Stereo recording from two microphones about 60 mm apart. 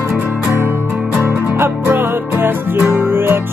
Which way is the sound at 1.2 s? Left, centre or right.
Right.